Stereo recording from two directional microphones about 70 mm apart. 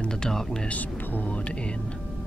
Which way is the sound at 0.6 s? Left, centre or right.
Left.